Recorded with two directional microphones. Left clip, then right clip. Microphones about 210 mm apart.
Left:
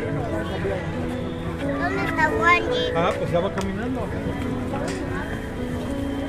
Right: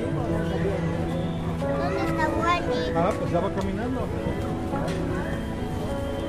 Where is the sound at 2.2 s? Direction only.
20° left (ahead or behind).